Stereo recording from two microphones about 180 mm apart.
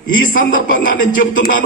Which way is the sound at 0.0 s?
50° left (ahead or behind).